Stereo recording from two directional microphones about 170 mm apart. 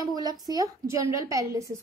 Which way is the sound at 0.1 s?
25° right (ahead or behind).